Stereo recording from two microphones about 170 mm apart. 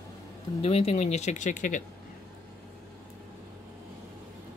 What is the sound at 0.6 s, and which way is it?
Speech, 35° left (ahead or behind).